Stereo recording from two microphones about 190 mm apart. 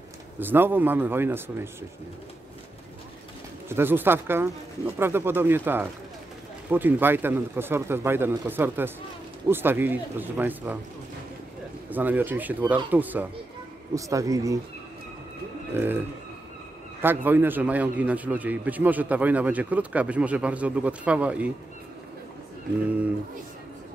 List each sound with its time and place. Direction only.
0.4 s a man's voice: 10° right (ahead or behind)
3.6 s a man's voice: 10° right (ahead or behind)
11.9 s a man's voice: 10° right (ahead or behind)
15.7 s a man's voice: 10° right (ahead or behind)
17.0 s a man's voice: 10° right (ahead or behind)